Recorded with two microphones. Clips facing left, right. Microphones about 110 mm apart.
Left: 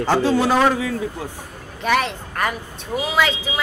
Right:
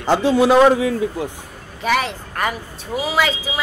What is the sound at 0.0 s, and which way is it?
Speech, 15° right (ahead or behind).